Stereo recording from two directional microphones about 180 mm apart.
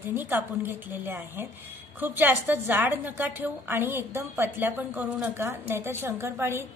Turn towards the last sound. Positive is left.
turn(degrees=-15)  # may be behind; listen again after turning